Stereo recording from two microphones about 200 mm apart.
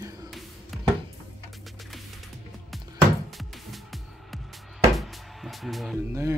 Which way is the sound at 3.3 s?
Centre (ahead or behind).